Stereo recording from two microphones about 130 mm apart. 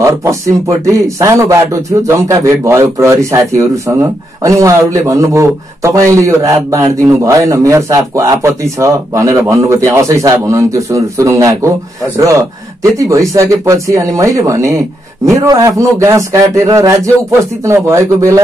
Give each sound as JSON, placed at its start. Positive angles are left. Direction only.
{"t": 0.0, "sound": "a man's voice", "side_deg": -25}